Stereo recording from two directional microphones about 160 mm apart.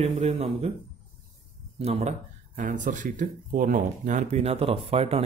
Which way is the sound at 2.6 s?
55° right (ahead or behind).